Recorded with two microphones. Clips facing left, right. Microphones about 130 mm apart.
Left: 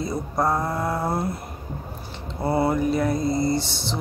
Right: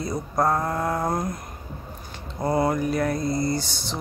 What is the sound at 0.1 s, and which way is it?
Speech, centre (ahead or behind).